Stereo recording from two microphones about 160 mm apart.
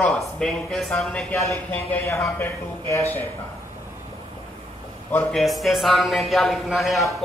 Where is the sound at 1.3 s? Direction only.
15° left (ahead or behind).